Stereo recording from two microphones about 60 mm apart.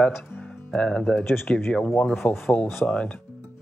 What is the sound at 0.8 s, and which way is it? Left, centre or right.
Speech, centre.